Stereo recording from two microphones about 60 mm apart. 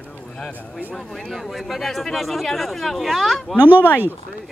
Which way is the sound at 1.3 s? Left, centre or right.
Centre.